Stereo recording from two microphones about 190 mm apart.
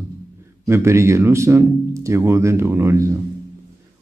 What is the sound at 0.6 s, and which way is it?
A man's voice, 15° right (ahead or behind).